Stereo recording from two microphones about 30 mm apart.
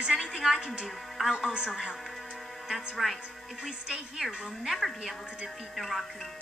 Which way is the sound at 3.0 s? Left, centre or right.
Centre.